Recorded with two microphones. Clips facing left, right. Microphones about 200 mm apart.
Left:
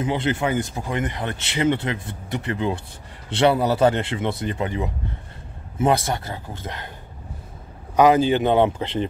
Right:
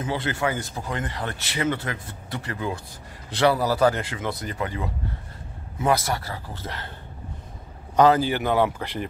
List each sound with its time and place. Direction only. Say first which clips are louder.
0.0 s speech: left 3 dB; 20° left (ahead or behind)
7.9 s speech: left 3 dB; 15° left (ahead or behind)